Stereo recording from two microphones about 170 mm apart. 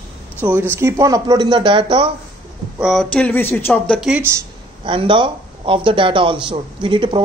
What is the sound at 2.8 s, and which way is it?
Speech, centre (ahead or behind).